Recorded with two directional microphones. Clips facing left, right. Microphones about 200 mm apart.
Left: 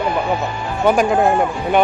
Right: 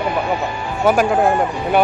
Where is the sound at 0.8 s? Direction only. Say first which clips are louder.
Even; 5° right (ahead or behind).